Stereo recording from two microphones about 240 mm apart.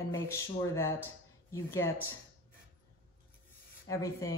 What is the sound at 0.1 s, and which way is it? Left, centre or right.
Speech, centre.